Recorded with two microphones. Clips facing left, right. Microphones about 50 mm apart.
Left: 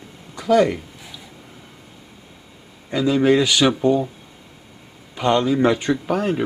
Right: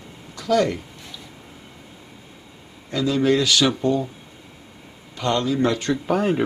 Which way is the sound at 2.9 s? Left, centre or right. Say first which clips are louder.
Left 3 dB; centre.